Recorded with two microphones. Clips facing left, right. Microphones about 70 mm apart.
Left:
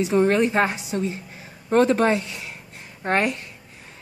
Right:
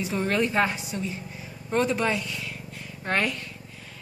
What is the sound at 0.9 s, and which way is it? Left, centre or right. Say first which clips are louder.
A woman's voice: left 6 dB; left.